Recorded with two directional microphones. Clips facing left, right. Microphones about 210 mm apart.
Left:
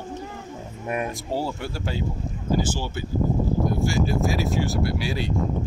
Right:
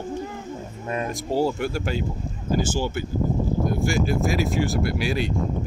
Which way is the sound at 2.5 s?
45° right (ahead or behind).